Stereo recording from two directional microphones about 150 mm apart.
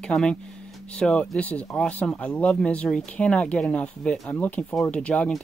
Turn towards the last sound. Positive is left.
turn(degrees=10)  # may be behind; listen again after turning